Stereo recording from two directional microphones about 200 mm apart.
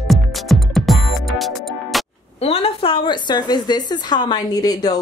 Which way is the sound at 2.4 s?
30° left (ahead or behind).